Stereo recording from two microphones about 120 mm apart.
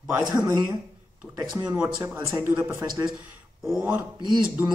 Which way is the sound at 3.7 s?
10° right (ahead or behind).